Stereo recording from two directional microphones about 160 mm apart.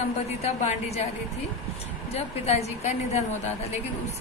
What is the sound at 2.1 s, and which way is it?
A woman's voice, 40° left (ahead or behind).